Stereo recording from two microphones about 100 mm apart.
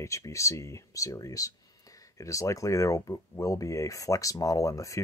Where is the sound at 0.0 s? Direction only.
30° left (ahead or behind).